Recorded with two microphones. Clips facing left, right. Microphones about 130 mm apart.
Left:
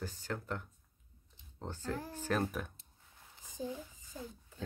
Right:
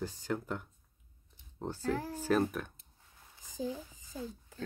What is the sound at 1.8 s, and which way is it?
Speech, 90° right.